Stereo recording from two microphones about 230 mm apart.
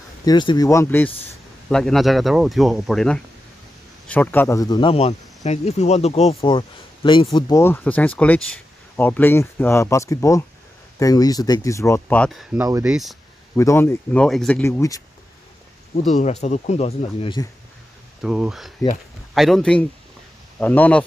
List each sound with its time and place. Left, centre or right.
0.2 s speech: centre
12.6 s speech: centre
12.9 s speech: centre
13.6 s speech: centre
16.1 s speech: left
18.2 s a man's voice: centre